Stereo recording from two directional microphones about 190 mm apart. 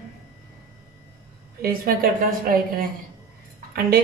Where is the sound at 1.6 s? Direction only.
50° right (ahead or behind).